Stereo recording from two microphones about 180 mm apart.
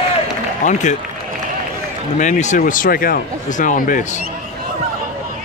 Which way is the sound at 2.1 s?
45° left (ahead or behind).